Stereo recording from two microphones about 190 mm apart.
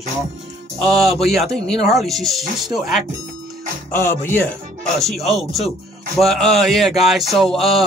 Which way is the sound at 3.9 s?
10° left (ahead or behind).